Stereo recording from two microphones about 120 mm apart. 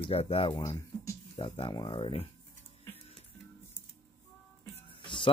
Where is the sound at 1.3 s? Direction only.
45° left (ahead or behind).